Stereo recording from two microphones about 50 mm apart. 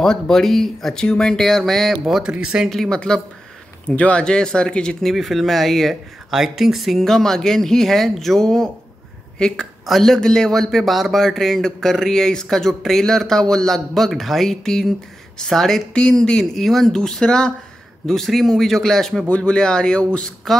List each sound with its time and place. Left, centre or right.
0.0 s a man's voice: centre
0.9 s a man's voice: centre
2.2 s speech: centre
2.7 s a man's voice: centre
3.9 s speech: left
5.0 s speech: centre
7.0 s a man's voice: centre
9.8 s a man's voice: centre
19.2 s a man's voice: centre